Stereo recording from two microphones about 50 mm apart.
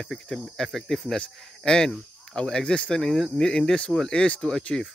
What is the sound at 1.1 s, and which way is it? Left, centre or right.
Speech, centre.